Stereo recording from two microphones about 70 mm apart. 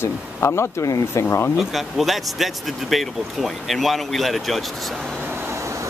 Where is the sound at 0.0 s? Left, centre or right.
Left.